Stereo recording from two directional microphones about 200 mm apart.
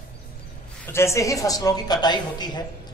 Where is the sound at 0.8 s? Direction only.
15° left (ahead or behind).